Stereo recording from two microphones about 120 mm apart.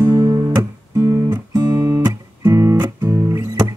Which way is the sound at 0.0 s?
30° right (ahead or behind).